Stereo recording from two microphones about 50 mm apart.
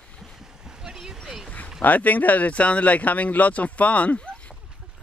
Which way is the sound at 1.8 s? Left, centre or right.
Left.